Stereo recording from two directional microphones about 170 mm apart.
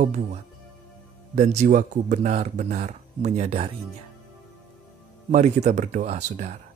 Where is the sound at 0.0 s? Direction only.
45° right (ahead or behind).